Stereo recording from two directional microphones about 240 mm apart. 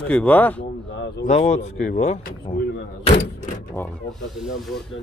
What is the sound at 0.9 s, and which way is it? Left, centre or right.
Speech, left.